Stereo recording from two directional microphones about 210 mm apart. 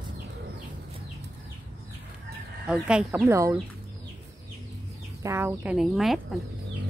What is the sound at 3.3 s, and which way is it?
Speech, 15° right (ahead or behind).